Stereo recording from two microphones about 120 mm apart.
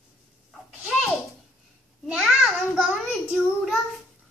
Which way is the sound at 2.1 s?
Centre (ahead or behind).